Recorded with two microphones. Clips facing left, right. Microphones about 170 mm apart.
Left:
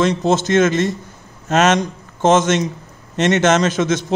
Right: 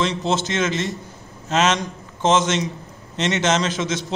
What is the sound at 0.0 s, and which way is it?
A man's voice, 45° left (ahead or behind).